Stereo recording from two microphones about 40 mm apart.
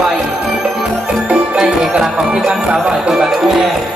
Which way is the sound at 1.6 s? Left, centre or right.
Right.